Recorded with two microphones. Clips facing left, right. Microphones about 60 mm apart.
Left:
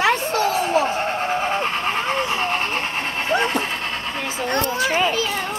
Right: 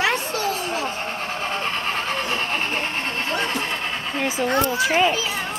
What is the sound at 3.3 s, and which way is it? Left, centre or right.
Vehicle, centre.